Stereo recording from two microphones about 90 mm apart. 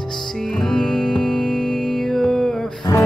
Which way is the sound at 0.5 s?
5° left (ahead or behind).